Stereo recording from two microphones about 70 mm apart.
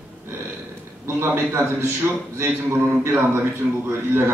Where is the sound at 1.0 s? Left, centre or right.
Right.